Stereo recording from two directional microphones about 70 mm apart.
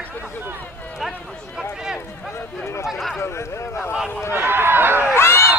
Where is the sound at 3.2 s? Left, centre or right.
Left.